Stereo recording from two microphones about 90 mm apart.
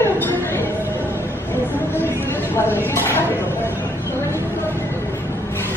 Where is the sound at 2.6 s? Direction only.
25° left (ahead or behind).